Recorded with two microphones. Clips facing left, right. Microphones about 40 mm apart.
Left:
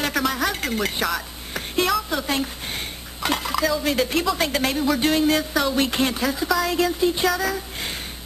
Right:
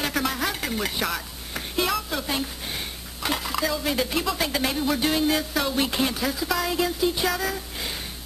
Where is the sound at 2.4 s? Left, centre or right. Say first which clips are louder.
Left 2 dB; centre.